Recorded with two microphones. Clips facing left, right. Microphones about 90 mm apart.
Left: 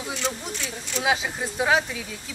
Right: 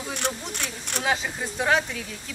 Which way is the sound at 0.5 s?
60° right (ahead or behind).